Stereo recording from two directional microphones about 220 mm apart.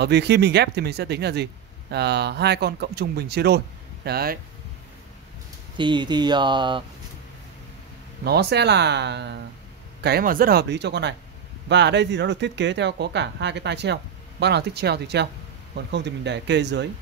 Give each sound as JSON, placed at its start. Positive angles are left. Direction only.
{"t": 0.0, "sound": "speech", "side_deg": -50}
{"t": 5.8, "sound": "speech", "side_deg": -20}
{"t": 8.2, "sound": "speech", "side_deg": -50}